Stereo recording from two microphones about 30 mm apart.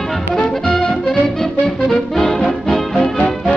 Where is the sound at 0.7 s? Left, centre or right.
Left.